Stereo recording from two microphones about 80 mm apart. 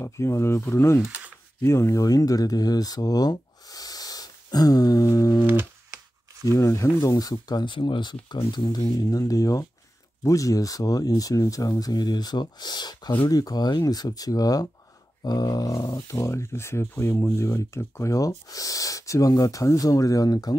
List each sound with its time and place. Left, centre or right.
0.0 s speech: left
6.4 s speech: left
13.3 s speech: left